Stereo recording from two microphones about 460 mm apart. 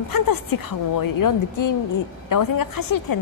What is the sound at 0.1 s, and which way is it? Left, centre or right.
A woman's voice, left.